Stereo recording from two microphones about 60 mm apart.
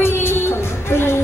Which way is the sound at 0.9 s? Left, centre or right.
Left.